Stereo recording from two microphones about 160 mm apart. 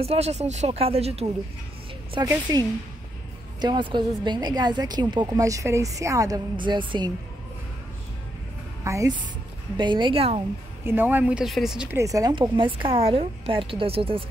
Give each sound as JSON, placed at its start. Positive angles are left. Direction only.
{"t": 0.0, "sound": "a woman's voice", "side_deg": -40}
{"t": 2.1, "sound": "a woman's voice", "side_deg": -25}
{"t": 3.6, "sound": "a woman's voice", "side_deg": -30}
{"t": 8.8, "sound": "a woman's voice", "side_deg": -20}
{"t": 9.8, "sound": "a woman's voice", "side_deg": -30}
{"t": 10.8, "sound": "speech", "side_deg": -15}
{"t": 12.0, "sound": "a woman's voice", "side_deg": -20}